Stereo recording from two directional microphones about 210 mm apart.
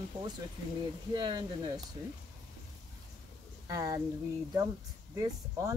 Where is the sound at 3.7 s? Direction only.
15° right (ahead or behind).